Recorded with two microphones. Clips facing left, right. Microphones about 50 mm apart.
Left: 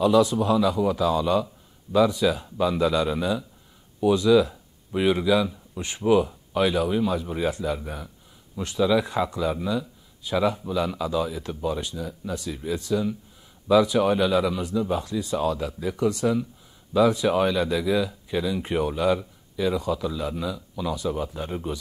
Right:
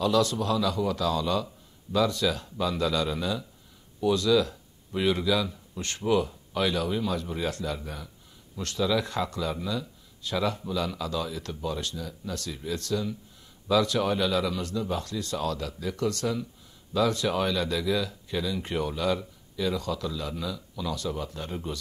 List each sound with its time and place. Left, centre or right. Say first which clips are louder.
0.0 s speech: left 5 dB; centre